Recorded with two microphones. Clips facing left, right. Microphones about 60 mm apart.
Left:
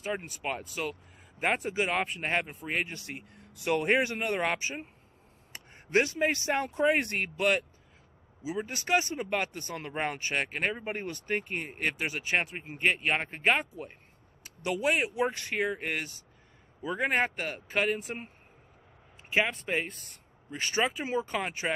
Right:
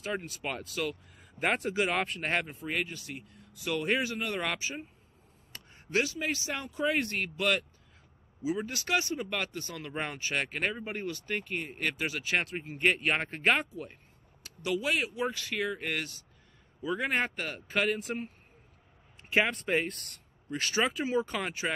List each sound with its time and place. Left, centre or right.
0.4 s speech: centre
2.9 s speech: left
6.9 s speech: left
8.7 s speech: left
10.3 s speech: centre
12.7 s speech: centre
14.6 s speech: left; by 18.1 s centre
19.3 s speech: centre
20.5 s speech: centre